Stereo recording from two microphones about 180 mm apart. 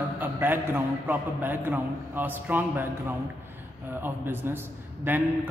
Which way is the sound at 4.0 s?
10° right (ahead or behind).